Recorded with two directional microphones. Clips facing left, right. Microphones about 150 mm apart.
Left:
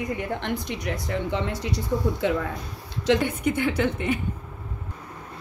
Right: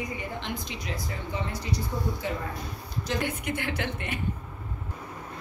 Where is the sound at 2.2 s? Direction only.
70° left (ahead or behind).